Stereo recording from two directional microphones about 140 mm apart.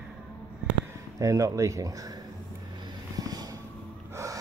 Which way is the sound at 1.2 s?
25° right (ahead or behind).